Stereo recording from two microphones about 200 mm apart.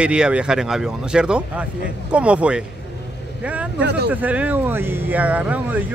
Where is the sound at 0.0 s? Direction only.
5° right (ahead or behind).